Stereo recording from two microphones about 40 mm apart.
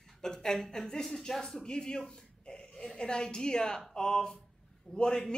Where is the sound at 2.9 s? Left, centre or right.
Centre.